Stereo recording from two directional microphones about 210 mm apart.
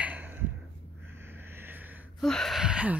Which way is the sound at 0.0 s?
5° right (ahead or behind).